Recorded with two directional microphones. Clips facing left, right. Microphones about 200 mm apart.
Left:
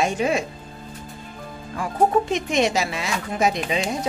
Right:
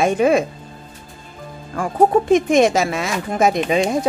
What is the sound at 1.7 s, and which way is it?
Speech, 50° right (ahead or behind).